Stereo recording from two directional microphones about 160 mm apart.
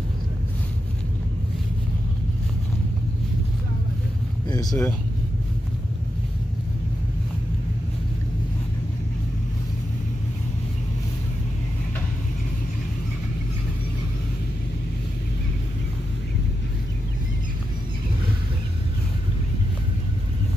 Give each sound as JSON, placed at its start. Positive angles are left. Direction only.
{"t": 4.5, "sound": "speech", "side_deg": 25}